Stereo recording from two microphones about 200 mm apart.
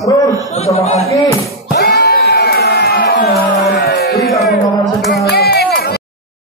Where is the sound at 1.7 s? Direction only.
50° left (ahead or behind).